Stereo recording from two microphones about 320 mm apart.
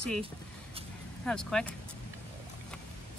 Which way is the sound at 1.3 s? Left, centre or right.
Centre.